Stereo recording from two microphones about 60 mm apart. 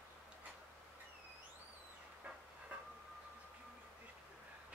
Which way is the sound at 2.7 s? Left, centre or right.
Centre.